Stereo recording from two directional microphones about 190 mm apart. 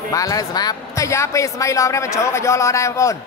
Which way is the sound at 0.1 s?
20° left (ahead or behind).